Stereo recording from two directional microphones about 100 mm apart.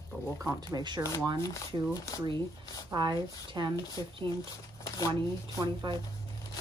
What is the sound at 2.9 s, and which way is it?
Speech, 45° right (ahead or behind).